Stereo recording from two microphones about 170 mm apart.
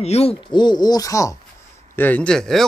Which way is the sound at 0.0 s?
35° left (ahead or behind).